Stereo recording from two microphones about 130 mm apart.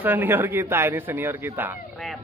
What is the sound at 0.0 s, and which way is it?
Speech, 15° right (ahead or behind).